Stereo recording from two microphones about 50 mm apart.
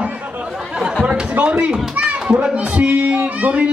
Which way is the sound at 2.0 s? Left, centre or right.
Right.